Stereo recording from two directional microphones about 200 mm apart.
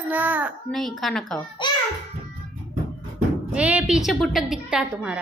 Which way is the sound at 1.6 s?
25° left (ahead or behind).